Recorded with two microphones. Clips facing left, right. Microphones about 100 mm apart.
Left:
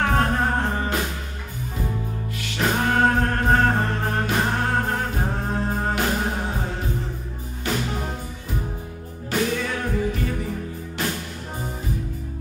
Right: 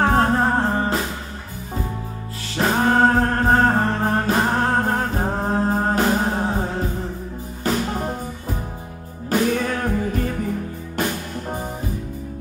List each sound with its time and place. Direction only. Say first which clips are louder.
0.0 s music: right 4 dB; 30° right (ahead or behind)
2.5 s music: right 4 dB; 35° right (ahead or behind)
7.6 s music: right 4 dB; 40° right (ahead or behind)